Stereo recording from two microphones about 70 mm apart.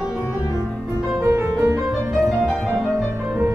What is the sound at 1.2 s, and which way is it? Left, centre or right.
Music, right.